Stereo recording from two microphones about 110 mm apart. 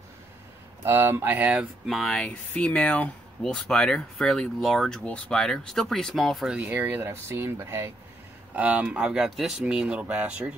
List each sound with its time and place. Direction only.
0.8 s speech: 20° right (ahead or behind)
1.9 s speech: centre (ahead or behind)
6.7 s speech: 15° right (ahead or behind)
8.5 s speech: 10° right (ahead or behind)